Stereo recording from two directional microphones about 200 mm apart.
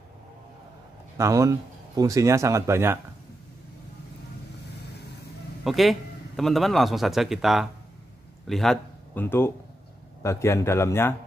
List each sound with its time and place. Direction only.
1.1 s speech: 15° right (ahead or behind)
5.6 s a man's voice: centre (ahead or behind)